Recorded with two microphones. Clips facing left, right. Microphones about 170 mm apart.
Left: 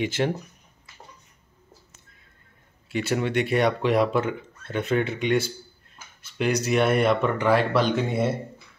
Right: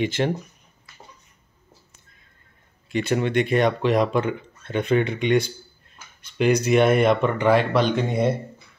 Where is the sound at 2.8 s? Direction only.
5° left (ahead or behind).